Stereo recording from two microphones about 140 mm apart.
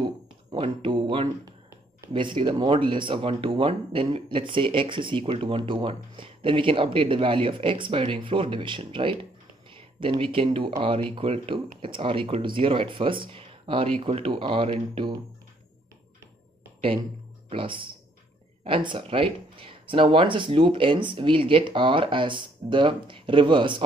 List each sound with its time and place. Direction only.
0.6 s a sound: 35° right (ahead or behind)
2.1 s speech: 35° right (ahead or behind)
17.5 s speech: 40° right (ahead or behind)